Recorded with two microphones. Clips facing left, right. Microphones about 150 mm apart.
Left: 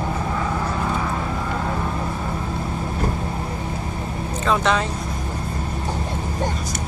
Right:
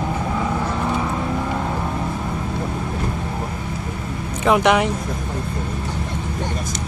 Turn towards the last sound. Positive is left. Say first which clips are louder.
# right 4 dB
turn(degrees=-15)  # may be behind; listen again after turning